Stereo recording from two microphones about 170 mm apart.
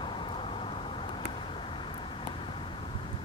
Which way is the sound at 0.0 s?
30° left (ahead or behind).